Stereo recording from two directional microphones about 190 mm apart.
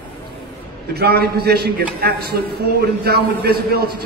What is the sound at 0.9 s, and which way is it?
A man's voice, 55° right (ahead or behind).